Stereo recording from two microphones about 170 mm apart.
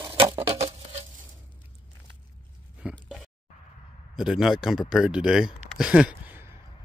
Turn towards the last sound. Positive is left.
turn(degrees=-10)  # may be behind; listen again after turning